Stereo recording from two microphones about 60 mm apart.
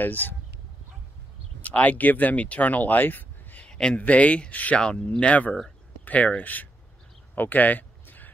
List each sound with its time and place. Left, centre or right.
0.0 s speech: left
1.6 s speech: left
3.6 s a sound: centre
4.0 s speech: left
4.7 s speech: centre
5.2 s speech: left
7.3 s a sound: left